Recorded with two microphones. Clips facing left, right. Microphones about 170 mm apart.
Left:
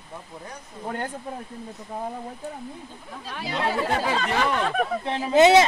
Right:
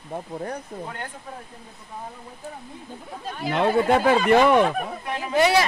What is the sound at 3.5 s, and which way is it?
Speech, 60° right (ahead or behind).